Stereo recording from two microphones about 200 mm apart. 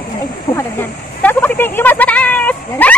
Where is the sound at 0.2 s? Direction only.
15° left (ahead or behind).